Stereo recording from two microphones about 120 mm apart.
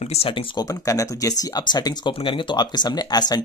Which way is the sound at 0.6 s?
30° left (ahead or behind).